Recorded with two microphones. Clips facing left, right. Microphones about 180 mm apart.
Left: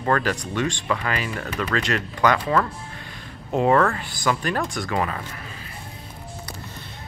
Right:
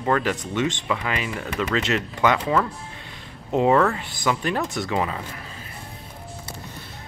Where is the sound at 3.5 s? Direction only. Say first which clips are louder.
Even; 15° right (ahead or behind).